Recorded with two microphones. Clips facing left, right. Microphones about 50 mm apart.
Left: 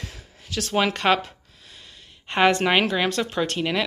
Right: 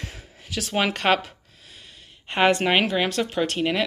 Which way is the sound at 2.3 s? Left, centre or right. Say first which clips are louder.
Left 1 dB; centre.